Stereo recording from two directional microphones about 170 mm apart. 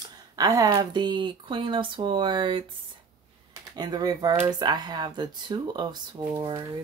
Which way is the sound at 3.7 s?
25° right (ahead or behind).